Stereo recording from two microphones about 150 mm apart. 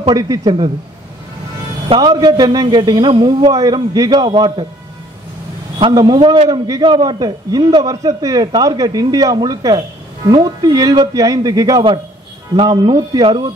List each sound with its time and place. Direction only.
0.1 s a man's voice: 25° right (ahead or behind)
2.0 s a man's voice: 25° right (ahead or behind)
5.8 s a man's voice: 30° right (ahead or behind)